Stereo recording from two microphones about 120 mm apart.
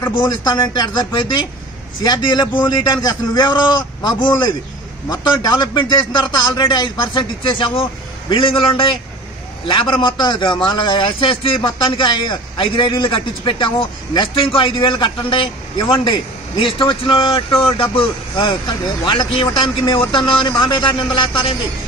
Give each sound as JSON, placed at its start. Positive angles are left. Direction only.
{"t": 0.2, "sound": "a man's voice", "side_deg": 35}